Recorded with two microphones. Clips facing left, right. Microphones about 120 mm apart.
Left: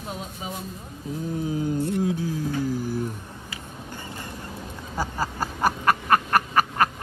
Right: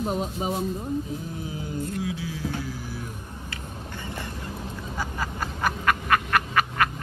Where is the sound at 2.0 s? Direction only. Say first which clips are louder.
Left 5 dB; 45° left (ahead or behind).